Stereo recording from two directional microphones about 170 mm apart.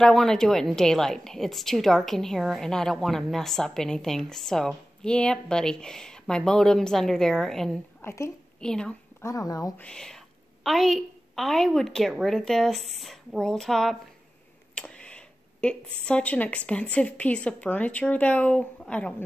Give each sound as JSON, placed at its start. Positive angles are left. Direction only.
{"t": 0.0, "sound": "a woman's voice", "side_deg": 5}
{"t": 8.0, "sound": "a woman's voice", "side_deg": 15}
{"t": 8.5, "sound": "a woman's voice", "side_deg": 5}
{"t": 9.2, "sound": "speech", "side_deg": 20}
{"t": 9.8, "sound": "a woman's voice", "side_deg": 5}